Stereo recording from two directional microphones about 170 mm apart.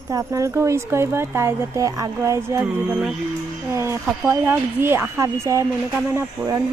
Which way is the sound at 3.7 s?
15° right (ahead or behind).